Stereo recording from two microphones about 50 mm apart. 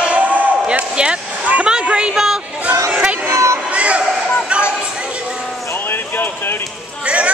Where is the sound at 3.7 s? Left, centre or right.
Right.